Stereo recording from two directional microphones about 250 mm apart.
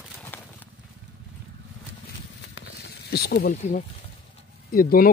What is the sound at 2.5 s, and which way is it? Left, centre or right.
Snake, left.